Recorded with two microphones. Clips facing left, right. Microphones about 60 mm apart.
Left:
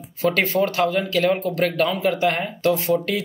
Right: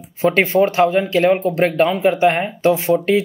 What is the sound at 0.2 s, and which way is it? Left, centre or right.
Speech, right.